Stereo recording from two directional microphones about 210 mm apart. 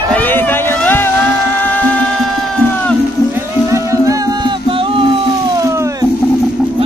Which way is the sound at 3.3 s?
15° right (ahead or behind).